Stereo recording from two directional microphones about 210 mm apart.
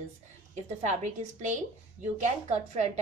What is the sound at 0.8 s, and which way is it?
A woman's voice, 35° right (ahead or behind).